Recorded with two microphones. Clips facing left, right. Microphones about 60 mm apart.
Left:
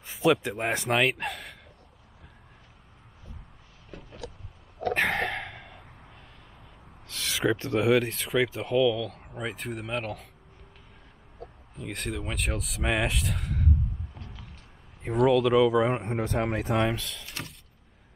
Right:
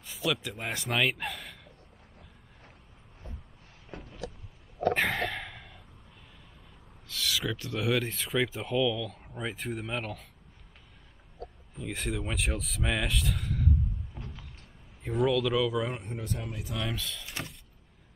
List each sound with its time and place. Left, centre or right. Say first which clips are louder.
0.0 s speech: left 8 dB; left; by 1.6 s centre
5.1 s a sound: left 3 dB; centre
5.4 s a sound: left 3 dB; centre
7.2 s a sound: even; centre
7.4 s speech: left 10 dB; left
8.0 s speech: left 3 dB; centre
11.7 s speech: even; centre
12.8 s speech: left 4 dB; centre
14.1 s a sound: right 2 dB; centre
15.2 s speech: left 6 dB; centre
16.0 s speech: left 9 dB; left
17.0 s speech: even; centre
17.3 s vehicle: even; centre